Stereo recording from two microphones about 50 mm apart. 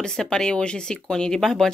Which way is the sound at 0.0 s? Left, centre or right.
Centre.